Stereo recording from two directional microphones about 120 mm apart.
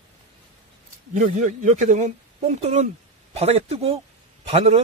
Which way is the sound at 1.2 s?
90° right.